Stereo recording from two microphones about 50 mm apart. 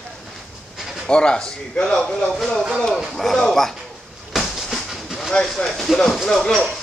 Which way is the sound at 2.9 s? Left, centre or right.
Centre.